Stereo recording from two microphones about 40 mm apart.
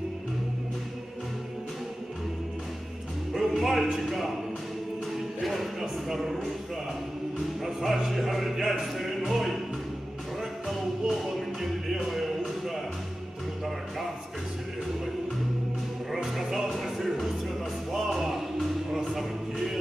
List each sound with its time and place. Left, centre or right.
3.3 s speech: centre
5.1 s music: centre
7.6 s speech: centre
8.9 s music: centre
10.7 s music: centre
16.3 s music: centre